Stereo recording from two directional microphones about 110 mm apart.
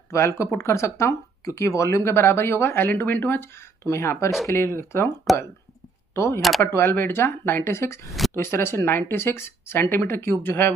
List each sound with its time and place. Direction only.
0.1 s speech: 25° left (ahead or behind)
6.1 s speech: 25° left (ahead or behind)